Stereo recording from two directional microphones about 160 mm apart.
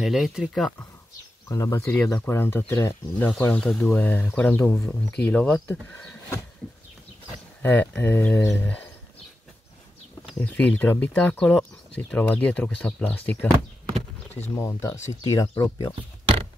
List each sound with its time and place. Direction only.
0.0 s speech: centre (ahead or behind)
1.5 s speech: 20° left (ahead or behind)
7.6 s speech: 10° left (ahead or behind)
10.4 s speech: 10° left (ahead or behind)
14.5 s speech: 15° left (ahead or behind)